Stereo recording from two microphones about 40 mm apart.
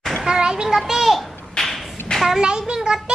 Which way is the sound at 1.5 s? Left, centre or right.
Centre.